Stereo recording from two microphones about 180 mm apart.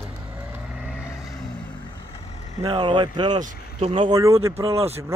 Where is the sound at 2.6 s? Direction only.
25° right (ahead or behind).